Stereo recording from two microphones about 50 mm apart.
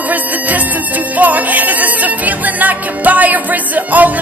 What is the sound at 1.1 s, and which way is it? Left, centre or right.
Music, right.